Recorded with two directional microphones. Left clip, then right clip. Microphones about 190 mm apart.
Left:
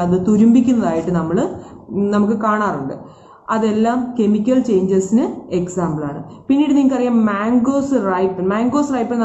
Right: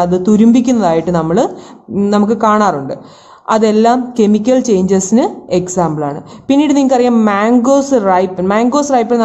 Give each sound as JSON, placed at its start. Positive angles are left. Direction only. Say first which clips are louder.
{"t": 0.0, "sound": "a woman's voice", "louder": "right 5 dB", "side_deg": -55}